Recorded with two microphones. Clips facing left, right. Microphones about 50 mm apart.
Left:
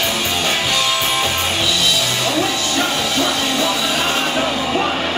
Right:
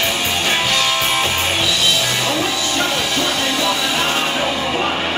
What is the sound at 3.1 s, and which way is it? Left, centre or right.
Music, centre.